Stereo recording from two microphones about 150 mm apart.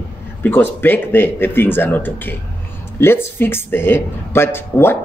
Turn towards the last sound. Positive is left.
turn(degrees=15)  # may be behind; listen again after turning